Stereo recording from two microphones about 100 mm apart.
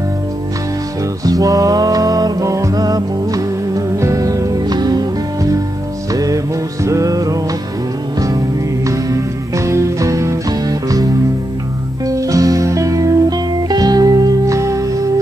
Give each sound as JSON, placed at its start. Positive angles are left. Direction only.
{"t": 1.2, "sound": "music", "side_deg": -40}
{"t": 8.8, "sound": "music", "side_deg": -30}
{"t": 12.1, "sound": "music", "side_deg": -35}